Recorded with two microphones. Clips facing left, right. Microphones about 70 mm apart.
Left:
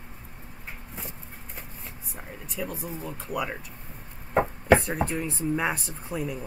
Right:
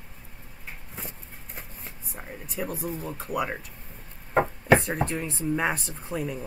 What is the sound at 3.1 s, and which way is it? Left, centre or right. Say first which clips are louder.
Speech: right 1 dB; centre.